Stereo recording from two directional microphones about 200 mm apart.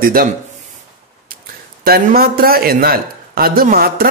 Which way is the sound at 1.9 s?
50° right (ahead or behind).